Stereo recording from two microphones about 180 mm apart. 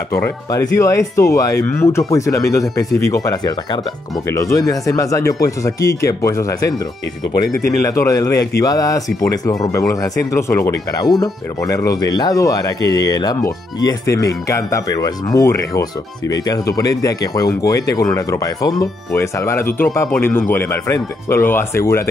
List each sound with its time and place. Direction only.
0.2 s speech: 15° left (ahead or behind)
7.8 s speech: 20° left (ahead or behind)